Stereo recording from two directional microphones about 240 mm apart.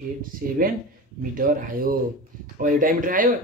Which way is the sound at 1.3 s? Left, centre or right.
Right.